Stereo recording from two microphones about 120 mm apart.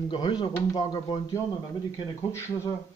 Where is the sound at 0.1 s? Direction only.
40° left (ahead or behind).